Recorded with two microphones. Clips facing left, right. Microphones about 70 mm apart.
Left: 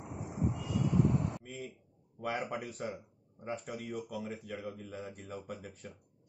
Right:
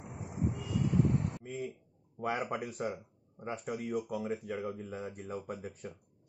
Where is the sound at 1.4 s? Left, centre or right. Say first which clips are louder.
Right 5 dB; right.